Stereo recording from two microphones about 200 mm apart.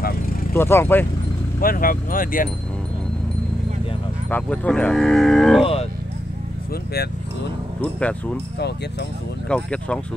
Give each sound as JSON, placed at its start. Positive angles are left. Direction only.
{"t": 0.6, "sound": "speech", "side_deg": 10}
{"t": 1.6, "sound": "speech", "side_deg": 45}
{"t": 4.3, "sound": "livestock", "side_deg": 5}
{"t": 6.7, "sound": "speech", "side_deg": 55}
{"t": 7.8, "sound": "livestock", "side_deg": 5}
{"t": 9.5, "sound": "livestock", "side_deg": 5}